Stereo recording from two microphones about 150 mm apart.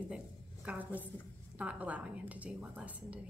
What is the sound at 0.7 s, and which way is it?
A woman's voice, 10° right (ahead or behind).